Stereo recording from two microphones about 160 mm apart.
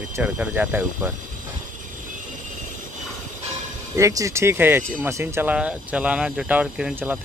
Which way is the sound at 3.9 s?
20° right (ahead or behind).